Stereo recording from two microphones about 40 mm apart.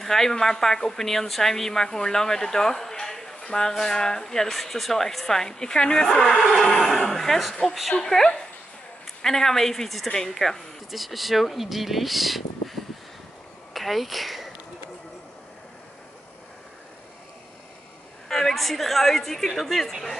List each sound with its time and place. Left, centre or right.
0.0 s a woman's voice: centre
6.4 s a woman's voice: centre
8.1 s a woman's voice: centre
10.9 s speech: centre
18.3 s speech: centre